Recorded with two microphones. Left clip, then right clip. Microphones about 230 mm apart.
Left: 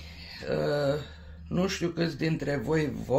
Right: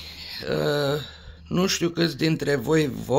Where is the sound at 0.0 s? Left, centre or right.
Right.